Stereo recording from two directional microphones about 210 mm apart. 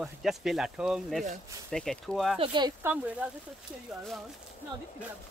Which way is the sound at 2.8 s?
10° right (ahead or behind).